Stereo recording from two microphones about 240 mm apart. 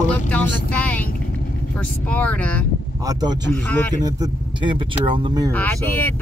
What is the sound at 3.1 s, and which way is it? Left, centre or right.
Speech, centre.